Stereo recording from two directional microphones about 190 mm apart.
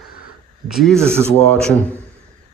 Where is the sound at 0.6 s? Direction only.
Centre (ahead or behind).